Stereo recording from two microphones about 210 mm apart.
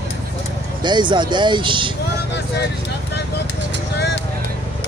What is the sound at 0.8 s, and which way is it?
Speech, 20° right (ahead or behind).